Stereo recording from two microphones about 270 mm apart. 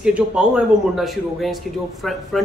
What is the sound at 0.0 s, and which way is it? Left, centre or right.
A man's voice, centre.